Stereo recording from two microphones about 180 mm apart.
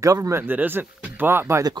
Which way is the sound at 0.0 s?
20° right (ahead or behind).